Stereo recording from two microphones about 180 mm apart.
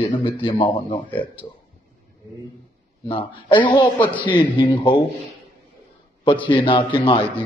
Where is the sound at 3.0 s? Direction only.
25° left (ahead or behind).